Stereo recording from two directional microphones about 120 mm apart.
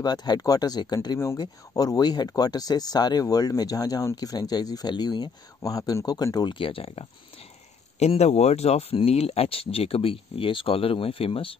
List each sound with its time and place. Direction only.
0.0 s speech: 35° left (ahead or behind); by 7.1 s 50° left (ahead or behind)
8.0 s speech: 65° left (ahead or behind)